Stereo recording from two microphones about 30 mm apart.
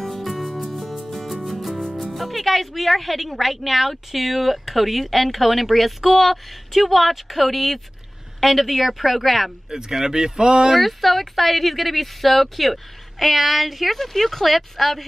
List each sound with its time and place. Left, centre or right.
0.0 s music: centre
2.0 s speech: centre
9.7 s speech: centre
10.8 s speech: centre